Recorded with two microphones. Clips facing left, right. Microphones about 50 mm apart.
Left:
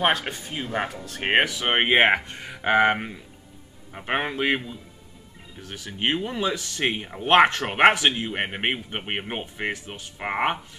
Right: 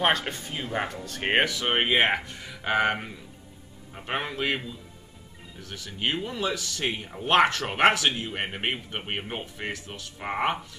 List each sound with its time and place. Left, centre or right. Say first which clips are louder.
0.3 s speech: left 2 dB; centre
1.7 s speech: left 6 dB; left